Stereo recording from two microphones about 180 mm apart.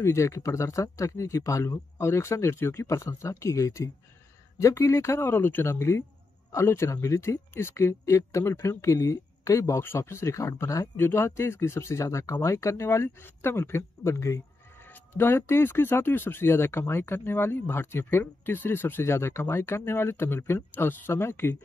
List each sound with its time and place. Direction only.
0.0 s speech: 15° left (ahead or behind)